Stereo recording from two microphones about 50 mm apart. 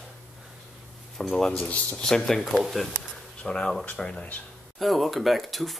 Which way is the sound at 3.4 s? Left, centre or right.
Centre.